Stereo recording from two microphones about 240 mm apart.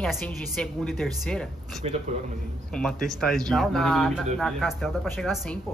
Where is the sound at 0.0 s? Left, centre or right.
Centre.